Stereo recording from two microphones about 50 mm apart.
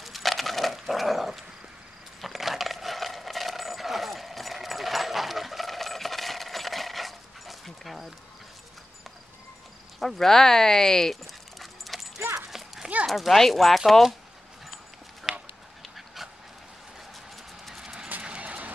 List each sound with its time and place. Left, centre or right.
0.0 s dog: centre
2.2 s a sound: centre
9.9 s speech: centre
11.6 s dog: centre
12.4 s horse: centre
13.0 s speech: centre
15.3 s duck: centre
17.7 s vehicle: centre
18.2 s vehicle: right